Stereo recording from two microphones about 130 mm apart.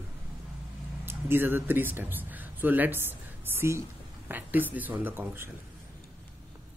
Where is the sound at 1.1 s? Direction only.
15° right (ahead or behind).